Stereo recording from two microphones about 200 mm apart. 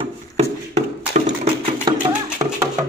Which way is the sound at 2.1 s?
15° right (ahead or behind).